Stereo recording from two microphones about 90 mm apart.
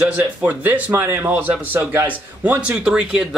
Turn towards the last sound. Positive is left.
turn(degrees=-10)  # may be behind; listen again after turning